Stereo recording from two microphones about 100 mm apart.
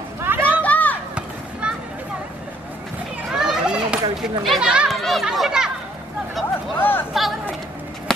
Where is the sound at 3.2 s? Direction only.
5° right (ahead or behind).